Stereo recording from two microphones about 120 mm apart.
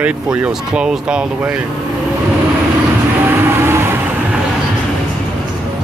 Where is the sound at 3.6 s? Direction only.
20° right (ahead or behind).